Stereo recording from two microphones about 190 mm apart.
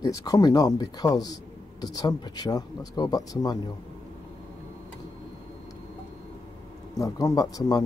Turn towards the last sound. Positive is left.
turn(degrees=20)  # may be behind; listen again after turning